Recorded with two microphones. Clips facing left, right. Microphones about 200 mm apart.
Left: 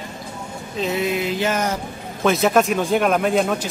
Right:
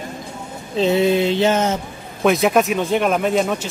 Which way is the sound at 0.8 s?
30° right (ahead or behind).